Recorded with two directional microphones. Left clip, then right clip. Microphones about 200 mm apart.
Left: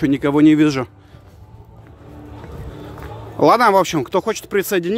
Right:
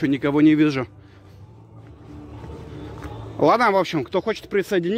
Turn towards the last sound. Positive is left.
turn(degrees=0)  # may be behind; listen again after turning